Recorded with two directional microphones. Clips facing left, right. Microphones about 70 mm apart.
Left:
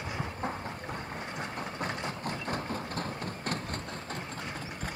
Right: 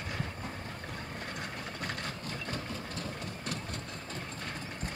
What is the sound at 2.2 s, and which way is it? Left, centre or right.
Engine, left.